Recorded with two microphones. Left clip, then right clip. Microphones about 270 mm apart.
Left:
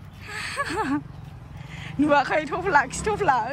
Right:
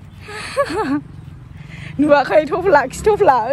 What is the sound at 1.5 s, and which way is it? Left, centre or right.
Vehicle, left.